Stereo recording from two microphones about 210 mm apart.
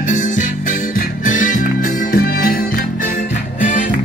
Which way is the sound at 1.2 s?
40° left (ahead or behind).